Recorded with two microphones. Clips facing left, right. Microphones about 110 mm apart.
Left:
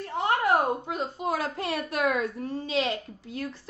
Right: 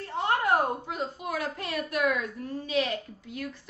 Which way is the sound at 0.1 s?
20° left (ahead or behind).